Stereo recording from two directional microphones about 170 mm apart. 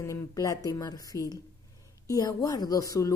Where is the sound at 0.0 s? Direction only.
20° left (ahead or behind).